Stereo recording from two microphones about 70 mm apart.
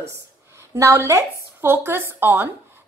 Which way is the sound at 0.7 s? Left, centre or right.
Right.